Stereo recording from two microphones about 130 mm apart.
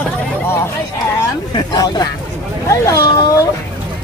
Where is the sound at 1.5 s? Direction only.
30° left (ahead or behind).